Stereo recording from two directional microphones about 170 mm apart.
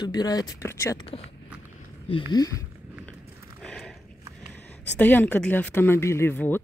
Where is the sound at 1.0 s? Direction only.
35° left (ahead or behind).